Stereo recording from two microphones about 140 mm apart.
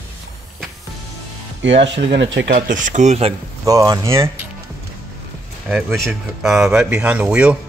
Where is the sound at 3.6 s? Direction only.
25° right (ahead or behind).